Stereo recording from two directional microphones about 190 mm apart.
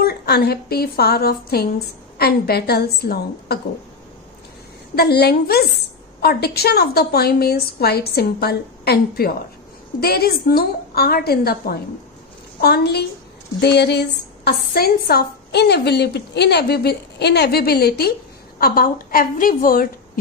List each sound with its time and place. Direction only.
0.0 s a woman's voice: 55° left (ahead or behind)
4.9 s a woman's voice: 60° left (ahead or behind)